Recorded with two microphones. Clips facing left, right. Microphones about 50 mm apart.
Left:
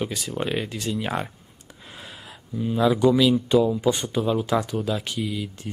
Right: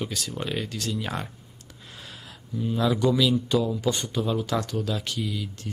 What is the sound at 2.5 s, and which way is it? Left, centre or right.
Speech, centre.